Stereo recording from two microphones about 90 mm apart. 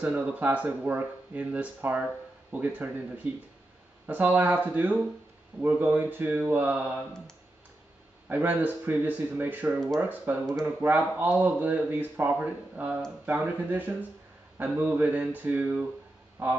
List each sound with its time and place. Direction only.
0.0 s speech: 15° right (ahead or behind)
4.1 s speech: 20° right (ahead or behind)
8.3 s speech: 20° right (ahead or behind)
16.4 s honk: 20° right (ahead or behind)